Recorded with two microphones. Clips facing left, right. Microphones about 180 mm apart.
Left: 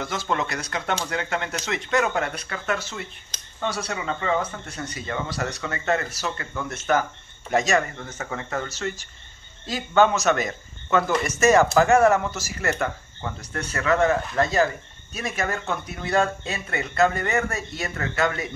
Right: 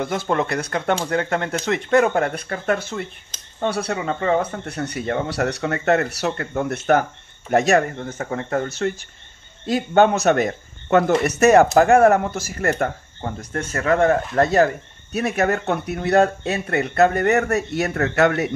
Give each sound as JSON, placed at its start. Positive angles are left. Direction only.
{"t": 0.0, "sound": "speech", "side_deg": -55}
{"t": 4.6, "sound": "speech", "side_deg": -65}
{"t": 7.9, "sound": "speech", "side_deg": -40}
{"t": 12.7, "sound": "speech", "side_deg": -40}